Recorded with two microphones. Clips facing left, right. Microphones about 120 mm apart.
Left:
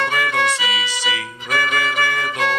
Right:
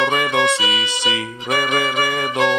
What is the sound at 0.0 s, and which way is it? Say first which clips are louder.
Music: right 3 dB; 20° right (ahead or behind).